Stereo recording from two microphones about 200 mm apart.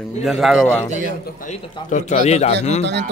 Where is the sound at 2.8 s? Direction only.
60° right (ahead or behind).